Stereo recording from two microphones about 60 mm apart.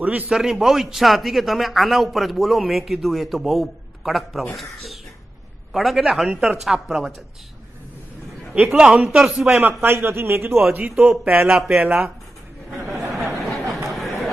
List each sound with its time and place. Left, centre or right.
0.3 s a man's voice: centre
5.7 s a man's voice: centre
8.7 s speech: centre
9.6 s a man's voice: right
11.4 s speech: centre
11.8 s a man's voice: right
12.9 s a sound: centre
13.8 s chatter: centre